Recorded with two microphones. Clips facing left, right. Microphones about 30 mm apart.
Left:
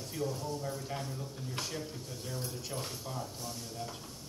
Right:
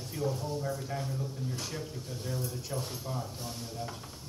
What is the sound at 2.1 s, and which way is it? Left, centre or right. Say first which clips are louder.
A man's voice: right 5 dB; centre.